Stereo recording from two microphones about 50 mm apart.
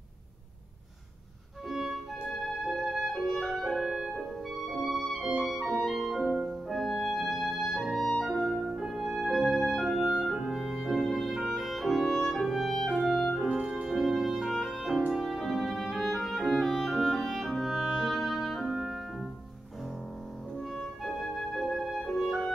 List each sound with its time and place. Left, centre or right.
2.2 s music: centre
8.2 s clarinet: centre
8.5 s music: centre
13.0 s clarinet: centre
13.5 s music: right
13.8 s music: centre
14.3 s clarinet: centre
20.7 s music: centre